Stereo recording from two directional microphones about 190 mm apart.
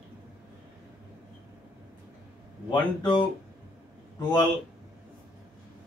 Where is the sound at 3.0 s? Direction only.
25° left (ahead or behind).